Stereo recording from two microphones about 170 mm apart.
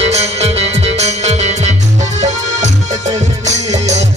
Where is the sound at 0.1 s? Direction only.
40° right (ahead or behind).